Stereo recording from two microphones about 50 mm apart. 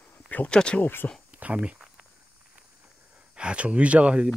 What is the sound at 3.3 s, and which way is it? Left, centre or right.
Speech, centre.